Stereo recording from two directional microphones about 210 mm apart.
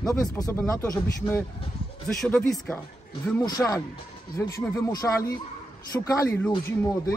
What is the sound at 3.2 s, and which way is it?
Speech, 15° left (ahead or behind).